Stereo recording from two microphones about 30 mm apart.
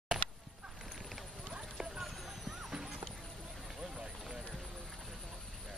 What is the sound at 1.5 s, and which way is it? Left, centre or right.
Clip-clop, centre.